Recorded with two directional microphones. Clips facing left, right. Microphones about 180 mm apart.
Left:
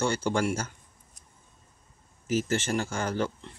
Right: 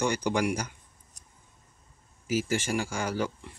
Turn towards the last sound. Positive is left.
turn(degrees=-10)  # may be behind; listen again after turning